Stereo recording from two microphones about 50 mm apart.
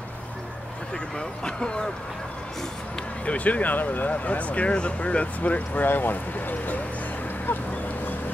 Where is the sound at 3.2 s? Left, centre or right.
Left.